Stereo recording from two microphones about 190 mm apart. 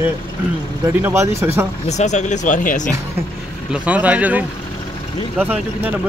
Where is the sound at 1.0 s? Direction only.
15° right (ahead or behind).